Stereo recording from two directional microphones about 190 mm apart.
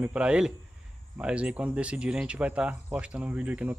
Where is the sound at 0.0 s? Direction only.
5° right (ahead or behind).